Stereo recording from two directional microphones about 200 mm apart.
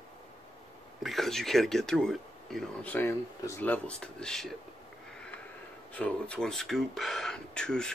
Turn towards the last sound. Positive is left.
turn(degrees=5)  # may be behind; listen again after turning